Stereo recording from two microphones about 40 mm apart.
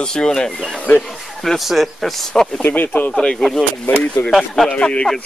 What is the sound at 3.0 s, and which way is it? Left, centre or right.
Speech, left.